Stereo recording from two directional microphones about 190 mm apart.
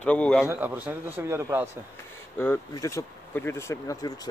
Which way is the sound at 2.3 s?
10° left (ahead or behind).